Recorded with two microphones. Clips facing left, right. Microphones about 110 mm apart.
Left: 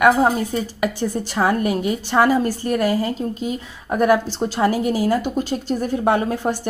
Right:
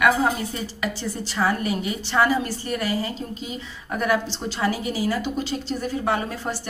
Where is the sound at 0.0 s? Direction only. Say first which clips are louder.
Left 5 dB; 45° left (ahead or behind).